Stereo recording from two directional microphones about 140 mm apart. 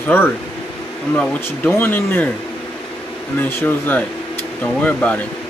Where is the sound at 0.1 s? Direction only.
15° left (ahead or behind).